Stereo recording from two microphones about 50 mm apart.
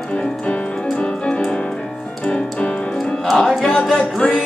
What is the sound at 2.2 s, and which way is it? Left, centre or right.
Music, left.